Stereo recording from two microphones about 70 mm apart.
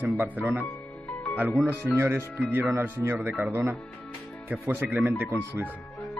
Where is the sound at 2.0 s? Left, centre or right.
Right.